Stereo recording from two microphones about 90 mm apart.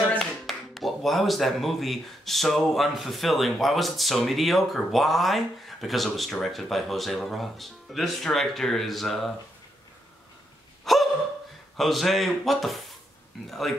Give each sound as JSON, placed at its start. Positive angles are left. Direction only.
{"t": 0.2, "sound": "speech", "side_deg": 0}
{"t": 10.9, "sound": "hiccup", "side_deg": 0}
{"t": 11.7, "sound": "speech", "side_deg": 0}